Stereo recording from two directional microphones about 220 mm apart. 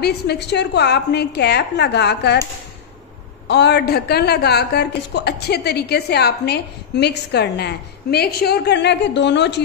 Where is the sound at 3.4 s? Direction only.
50° left (ahead or behind).